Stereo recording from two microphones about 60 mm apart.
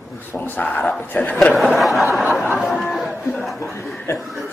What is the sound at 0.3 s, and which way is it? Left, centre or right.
A man's voice, left.